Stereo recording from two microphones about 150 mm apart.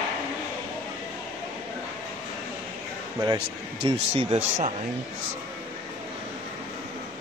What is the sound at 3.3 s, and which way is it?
Speech, 40° right (ahead or behind).